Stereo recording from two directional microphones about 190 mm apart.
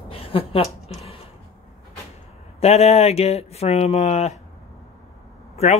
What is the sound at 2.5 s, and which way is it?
Speech, 35° left (ahead or behind).